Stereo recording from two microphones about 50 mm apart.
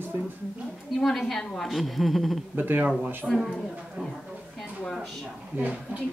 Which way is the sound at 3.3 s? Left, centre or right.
Centre.